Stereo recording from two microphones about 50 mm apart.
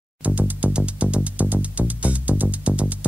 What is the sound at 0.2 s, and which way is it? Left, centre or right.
Music, right.